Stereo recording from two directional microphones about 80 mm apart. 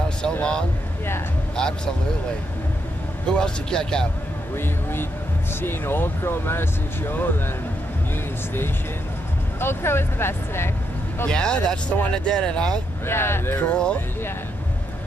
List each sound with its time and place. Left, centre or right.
0.2 s speech: centre
3.3 s speech: centre
5.5 s speech: left
9.6 s speech: left
11.2 s speech: centre
13.0 s speech: left